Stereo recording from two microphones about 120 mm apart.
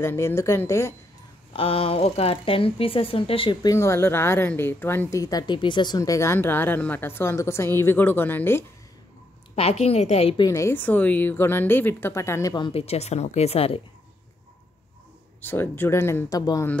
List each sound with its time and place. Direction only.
0.0 s speech: 20° left (ahead or behind)
1.5 s speech: 50° left (ahead or behind)
3.6 s speech: 25° left (ahead or behind)
9.6 s speech: 60° left (ahead or behind)
10.4 s a woman's voice: 25° left (ahead or behind)
12.7 s speech: 60° left (ahead or behind)
15.4 s speech: 15° left (ahead or behind)